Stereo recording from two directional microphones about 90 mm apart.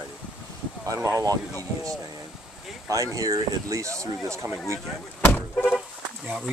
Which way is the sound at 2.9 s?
40° right (ahead or behind).